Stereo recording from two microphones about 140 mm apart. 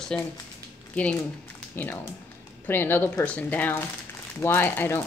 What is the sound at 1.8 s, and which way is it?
Speech, 15° left (ahead or behind).